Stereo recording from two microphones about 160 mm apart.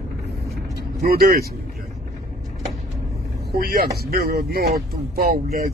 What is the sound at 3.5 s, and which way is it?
Speech, 75° right (ahead or behind).